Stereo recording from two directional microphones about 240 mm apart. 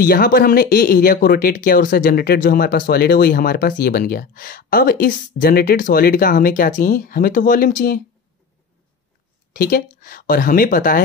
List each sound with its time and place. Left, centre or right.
0.0 s speech: left
9.5 s speech: left